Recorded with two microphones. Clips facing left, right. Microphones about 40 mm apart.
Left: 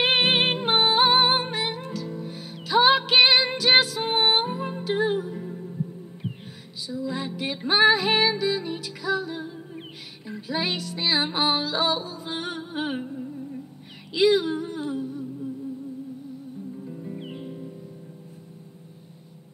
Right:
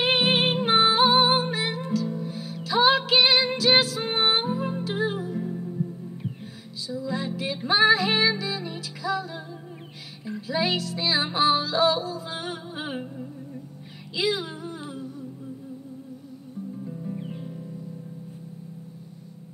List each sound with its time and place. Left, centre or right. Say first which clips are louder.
0.0 s music: left 1 dB; centre
6.9 s music: even; centre
14.1 s a sound: left 7 dB; centre
16.8 s music: right 1 dB; centre
17.2 s music: even; left